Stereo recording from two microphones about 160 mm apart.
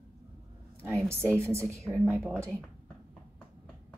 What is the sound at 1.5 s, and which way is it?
Speech, 15° right (ahead or behind).